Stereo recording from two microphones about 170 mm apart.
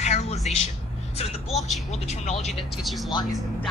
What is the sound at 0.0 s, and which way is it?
Music, 40° left (ahead or behind).